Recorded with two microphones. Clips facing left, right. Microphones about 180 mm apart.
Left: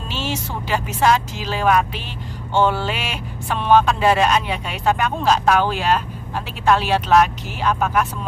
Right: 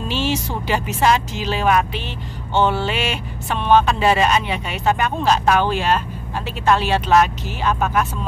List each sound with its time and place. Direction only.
0.1 s speech: centre (ahead or behind)